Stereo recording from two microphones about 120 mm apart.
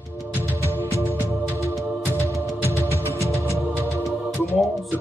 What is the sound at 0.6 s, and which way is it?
Music, 25° right (ahead or behind).